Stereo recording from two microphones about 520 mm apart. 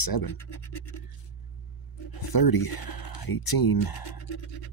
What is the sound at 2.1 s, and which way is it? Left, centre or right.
Speech, left.